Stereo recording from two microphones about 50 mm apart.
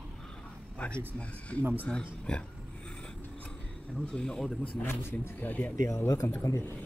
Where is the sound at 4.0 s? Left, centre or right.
Centre.